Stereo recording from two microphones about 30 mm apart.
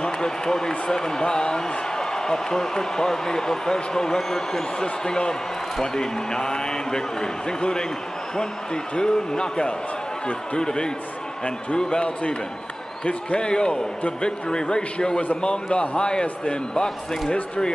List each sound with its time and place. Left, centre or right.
0.0 s a man's voice: left
4.7 s a man's voice: left
8.9 s a man's voice: left
13.4 s a man's voice: left
16.7 s a man's voice: left